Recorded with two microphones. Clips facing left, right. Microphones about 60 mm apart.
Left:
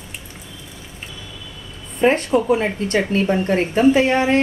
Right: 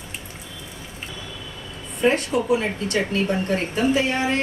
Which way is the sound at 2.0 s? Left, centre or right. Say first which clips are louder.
Left 4 dB; left.